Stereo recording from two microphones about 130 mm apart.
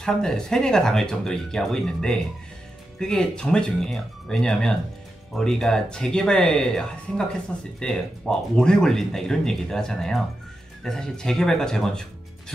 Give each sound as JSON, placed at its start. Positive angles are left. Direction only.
{"t": 0.0, "sound": "speech", "side_deg": 5}